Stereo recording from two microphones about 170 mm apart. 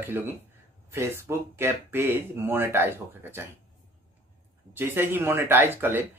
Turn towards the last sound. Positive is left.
turn(degrees=-10)  # may be behind; listen again after turning